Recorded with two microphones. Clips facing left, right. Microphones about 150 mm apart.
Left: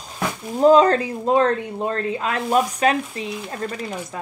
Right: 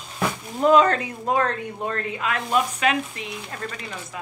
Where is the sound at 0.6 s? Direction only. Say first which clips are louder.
Left 4 dB; 35° left (ahead or behind).